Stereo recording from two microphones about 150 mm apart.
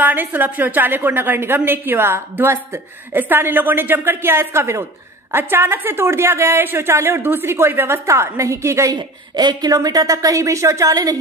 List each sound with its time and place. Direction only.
0.0 s a woman's voice: 10° right (ahead or behind)